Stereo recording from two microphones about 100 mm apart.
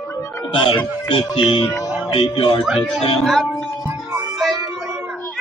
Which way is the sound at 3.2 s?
Centre (ahead or behind).